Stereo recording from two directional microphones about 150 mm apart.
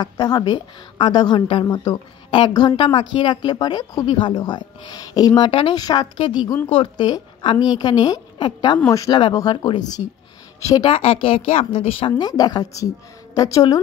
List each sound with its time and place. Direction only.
0.0 s a woman's voice: 25° left (ahead or behind)
5.8 s a woman's voice: 25° left (ahead or behind)
10.6 s a woman's voice: 25° left (ahead or behind)
10.9 s a woman's voice: 40° left (ahead or behind)
12.2 s a woman's voice: 25° left (ahead or behind)